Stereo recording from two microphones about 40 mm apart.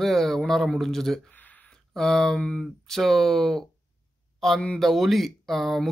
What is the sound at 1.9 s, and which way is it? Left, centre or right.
Speech, centre.